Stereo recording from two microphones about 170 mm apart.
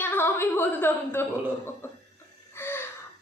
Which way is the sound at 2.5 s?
15° left (ahead or behind).